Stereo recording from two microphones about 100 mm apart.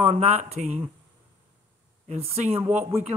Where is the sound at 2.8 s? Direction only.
25° right (ahead or behind).